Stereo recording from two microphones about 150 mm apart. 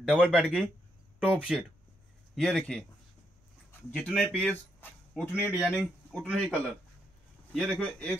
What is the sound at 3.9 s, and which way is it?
Speech, 5° left (ahead or behind).